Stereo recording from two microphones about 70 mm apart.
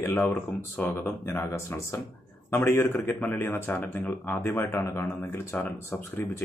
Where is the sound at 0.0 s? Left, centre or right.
Left.